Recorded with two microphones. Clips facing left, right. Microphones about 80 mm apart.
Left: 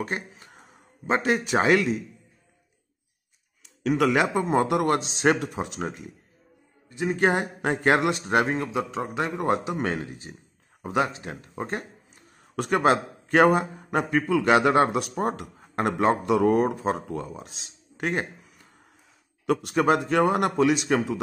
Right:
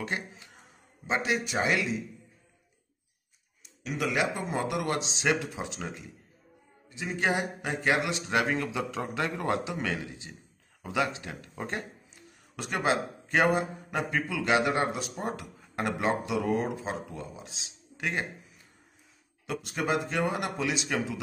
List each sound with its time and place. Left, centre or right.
0.0 s speech: left
1.0 s speech: left
3.8 s a man's voice: left
9.7 s a man's voice: left
12.5 s a man's voice: left